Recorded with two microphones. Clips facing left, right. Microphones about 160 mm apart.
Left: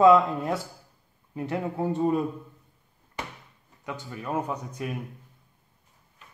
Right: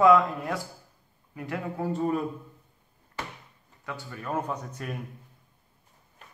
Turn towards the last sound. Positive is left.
turn(degrees=10)  # may be behind; listen again after turning